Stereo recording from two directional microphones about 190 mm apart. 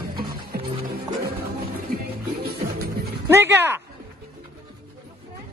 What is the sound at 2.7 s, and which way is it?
Music, 50° right (ahead or behind).